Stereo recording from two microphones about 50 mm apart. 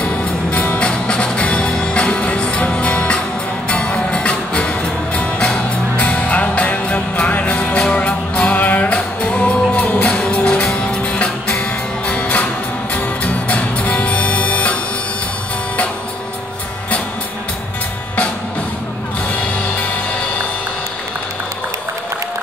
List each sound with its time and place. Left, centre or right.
0.0 s music: left